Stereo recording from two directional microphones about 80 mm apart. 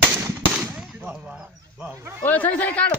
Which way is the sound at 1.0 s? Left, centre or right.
Right.